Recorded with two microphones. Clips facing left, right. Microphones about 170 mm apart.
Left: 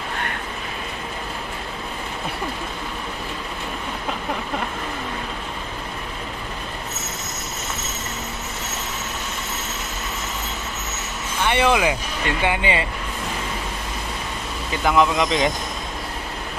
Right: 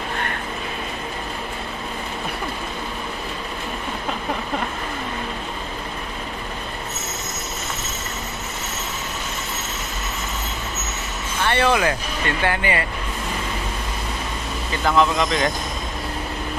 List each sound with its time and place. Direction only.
11.4 s speech: 15° left (ahead or behind)
14.7 s speech: 15° left (ahead or behind)